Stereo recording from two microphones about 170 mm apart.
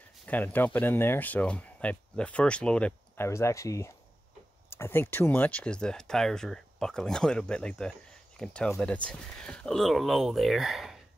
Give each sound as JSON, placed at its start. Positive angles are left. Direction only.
{"t": 0.3, "sound": "speech", "side_deg": 10}
{"t": 3.3, "sound": "speech", "side_deg": 15}